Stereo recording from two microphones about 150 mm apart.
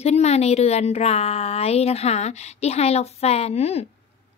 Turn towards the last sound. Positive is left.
turn(degrees=45)  # may be behind; listen again after turning